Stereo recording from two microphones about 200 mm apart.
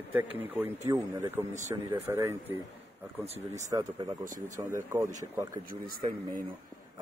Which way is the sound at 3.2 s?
30° right (ahead or behind).